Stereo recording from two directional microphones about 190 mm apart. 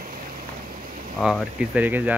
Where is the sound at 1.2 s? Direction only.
5° right (ahead or behind).